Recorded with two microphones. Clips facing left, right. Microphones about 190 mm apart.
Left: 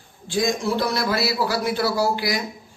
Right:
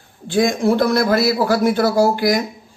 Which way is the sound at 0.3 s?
55° right (ahead or behind).